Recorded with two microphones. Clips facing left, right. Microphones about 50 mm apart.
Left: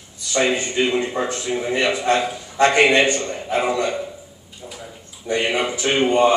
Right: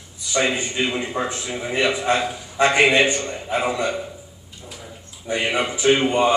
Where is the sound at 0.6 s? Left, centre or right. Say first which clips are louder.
Left 3 dB; centre.